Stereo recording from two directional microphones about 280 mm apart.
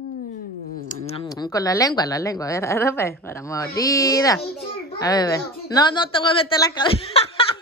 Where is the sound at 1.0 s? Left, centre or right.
Centre.